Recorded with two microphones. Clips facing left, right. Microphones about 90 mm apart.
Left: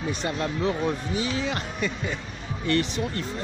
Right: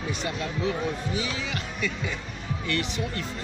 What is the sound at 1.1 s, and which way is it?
Speech, 40° left (ahead or behind).